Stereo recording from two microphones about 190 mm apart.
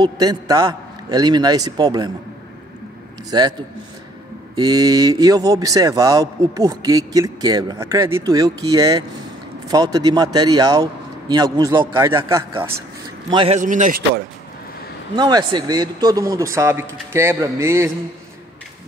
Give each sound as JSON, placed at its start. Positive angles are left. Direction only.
{"t": 0.0, "sound": "speech", "side_deg": -20}
{"t": 3.3, "sound": "speech", "side_deg": -20}
{"t": 4.6, "sound": "a man's voice", "side_deg": -20}
{"t": 13.3, "sound": "speech", "side_deg": -30}
{"t": 13.6, "sound": "a man's voice", "side_deg": -40}
{"t": 15.1, "sound": "a man's voice", "side_deg": -25}